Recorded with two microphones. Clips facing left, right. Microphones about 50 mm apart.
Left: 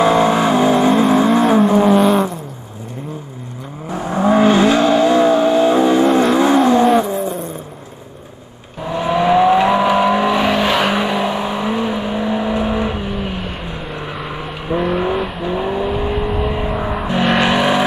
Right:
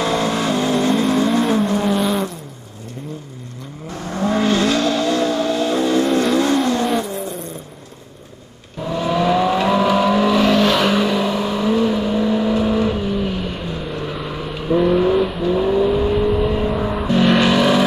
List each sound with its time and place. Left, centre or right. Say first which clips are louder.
0.0 s vehicle: left 6 dB; centre
2.0 s vehicle: left 6 dB; centre
3.9 s vehicle: left 6 dB; centre
6.3 s vehicle: left 5 dB; centre
8.8 s vehicle: left 2 dB; centre